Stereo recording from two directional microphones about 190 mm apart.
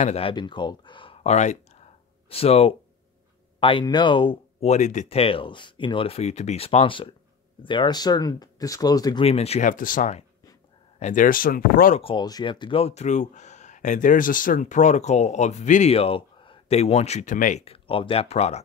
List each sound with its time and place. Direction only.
0.0 s speech: 30° left (ahead or behind)
9.2 s speech: 30° left (ahead or behind); by 12.0 s 50° left (ahead or behind)
12.0 s speech: 25° left (ahead or behind)